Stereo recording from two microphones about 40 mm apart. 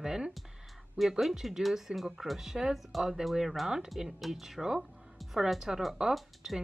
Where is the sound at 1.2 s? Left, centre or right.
Centre.